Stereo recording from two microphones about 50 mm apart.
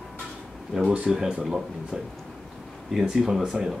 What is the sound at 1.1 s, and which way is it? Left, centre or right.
Speech, centre.